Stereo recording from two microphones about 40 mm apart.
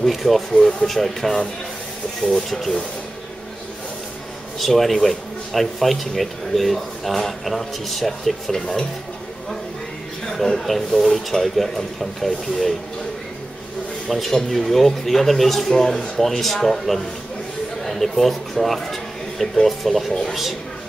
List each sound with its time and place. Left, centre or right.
0.1 s speech: centre
0.6 s speech: left
0.8 s speech: centre
4.6 s speech: centre
8.5 s speech: centre
10.2 s speech: centre
14.0 s speech: centre